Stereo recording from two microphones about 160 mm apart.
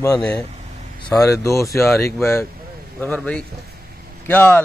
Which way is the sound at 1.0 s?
20° left (ahead or behind).